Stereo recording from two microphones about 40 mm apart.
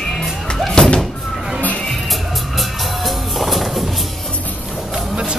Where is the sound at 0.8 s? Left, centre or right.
Centre.